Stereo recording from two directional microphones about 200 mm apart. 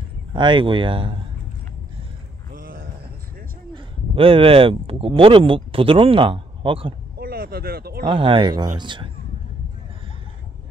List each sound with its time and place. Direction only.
0.3 s speech: 25° right (ahead or behind)
2.5 s a sound: 45° right (ahead or behind)
3.7 s speech: 25° right (ahead or behind)
7.2 s speech: 50° right (ahead or behind)
8.1 s speech: 25° right (ahead or behind)